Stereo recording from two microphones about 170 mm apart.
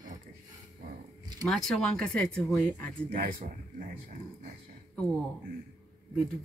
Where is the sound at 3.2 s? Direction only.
55° right (ahead or behind).